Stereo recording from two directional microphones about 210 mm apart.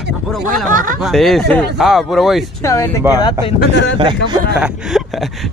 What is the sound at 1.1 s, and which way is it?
Speech, centre (ahead or behind).